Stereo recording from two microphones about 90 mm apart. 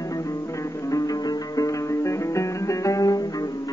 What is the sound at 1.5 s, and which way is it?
Music, 35° left (ahead or behind).